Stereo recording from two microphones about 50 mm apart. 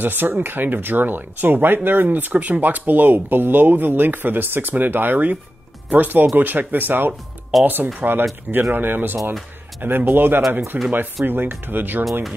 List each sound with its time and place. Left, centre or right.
0.0 s speech: right
10.7 s speech: right
11.2 s speech: right
12.0 s speech: centre